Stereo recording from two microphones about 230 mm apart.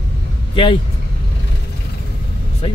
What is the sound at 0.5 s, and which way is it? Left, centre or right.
Speech, left.